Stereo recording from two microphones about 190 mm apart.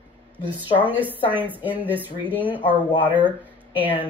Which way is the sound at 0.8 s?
10° right (ahead or behind).